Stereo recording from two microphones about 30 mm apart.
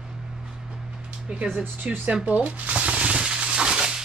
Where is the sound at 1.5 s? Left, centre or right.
Right.